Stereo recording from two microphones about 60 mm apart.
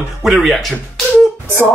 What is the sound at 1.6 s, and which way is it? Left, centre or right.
Music, left.